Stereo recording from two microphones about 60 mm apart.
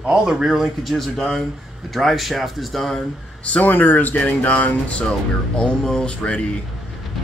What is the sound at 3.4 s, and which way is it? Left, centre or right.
Speech, left.